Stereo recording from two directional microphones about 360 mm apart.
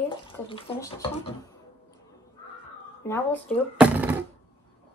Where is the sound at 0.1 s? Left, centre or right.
Centre.